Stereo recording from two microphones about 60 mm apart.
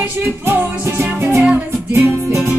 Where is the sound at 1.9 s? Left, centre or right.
Right.